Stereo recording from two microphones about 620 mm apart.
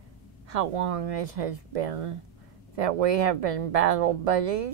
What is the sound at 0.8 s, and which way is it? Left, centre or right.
Speech, right.